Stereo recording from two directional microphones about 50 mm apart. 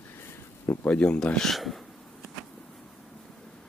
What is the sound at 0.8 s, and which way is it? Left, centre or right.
Speech, left.